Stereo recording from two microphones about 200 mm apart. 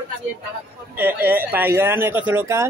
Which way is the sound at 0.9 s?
10° right (ahead or behind).